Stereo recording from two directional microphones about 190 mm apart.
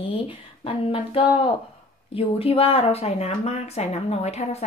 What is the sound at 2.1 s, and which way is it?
Speech, 30° left (ahead or behind).